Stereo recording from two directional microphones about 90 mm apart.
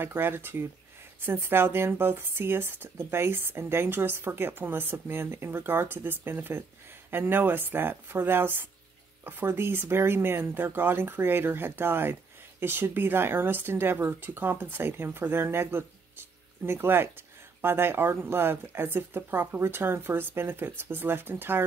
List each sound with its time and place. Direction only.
0.0 s speech: 25° right (ahead or behind)